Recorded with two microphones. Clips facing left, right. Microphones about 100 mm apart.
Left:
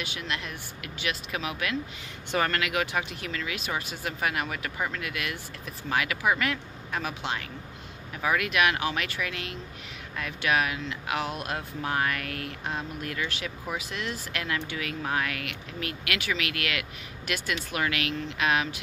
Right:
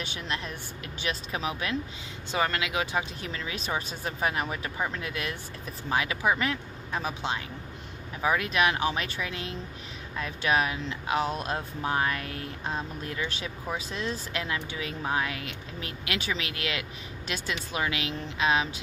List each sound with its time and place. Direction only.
0.0 s speech: 35° right (ahead or behind)
2.3 s speech: 15° right (ahead or behind)
5.0 s speech: 30° right (ahead or behind)